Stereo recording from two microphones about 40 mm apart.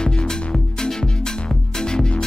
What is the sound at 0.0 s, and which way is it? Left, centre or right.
Music, centre.